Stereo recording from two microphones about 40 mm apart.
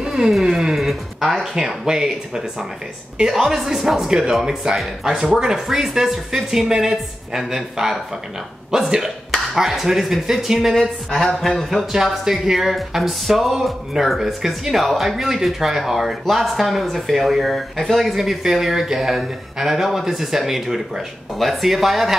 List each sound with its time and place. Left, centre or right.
0.0 s a sound: centre
0.5 s speech: centre
10.7 s speech: centre
11.9 s speech: centre